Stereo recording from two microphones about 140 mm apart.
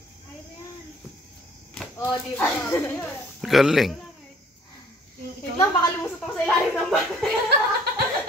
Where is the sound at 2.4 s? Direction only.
15° left (ahead or behind).